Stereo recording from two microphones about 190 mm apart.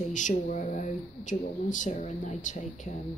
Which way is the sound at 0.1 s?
40° left (ahead or behind).